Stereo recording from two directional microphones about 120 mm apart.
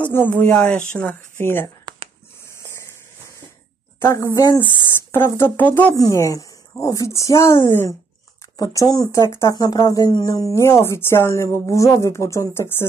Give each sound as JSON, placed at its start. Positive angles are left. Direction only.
{"t": 0.0, "sound": "speech", "side_deg": 15}
{"t": 2.5, "sound": "a sound", "side_deg": 20}
{"t": 4.0, "sound": "speech", "side_deg": 25}
{"t": 5.9, "sound": "speech", "side_deg": 30}
{"t": 8.5, "sound": "speech", "side_deg": 30}